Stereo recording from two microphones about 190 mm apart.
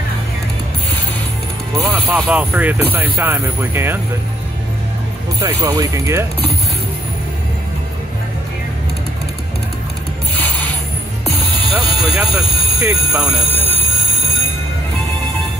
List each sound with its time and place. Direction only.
1.9 s speech: 10° right (ahead or behind)
5.4 s speech: 20° right (ahead or behind)
11.6 s music: 25° right (ahead or behind)
12.2 s speech: 10° right (ahead or behind)